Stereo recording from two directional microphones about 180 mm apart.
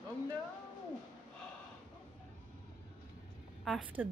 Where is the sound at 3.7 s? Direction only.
Centre (ahead or behind).